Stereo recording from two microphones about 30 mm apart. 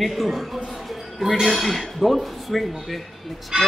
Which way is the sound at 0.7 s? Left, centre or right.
Centre.